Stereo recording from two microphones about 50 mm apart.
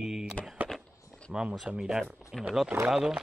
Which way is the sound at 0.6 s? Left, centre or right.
Right.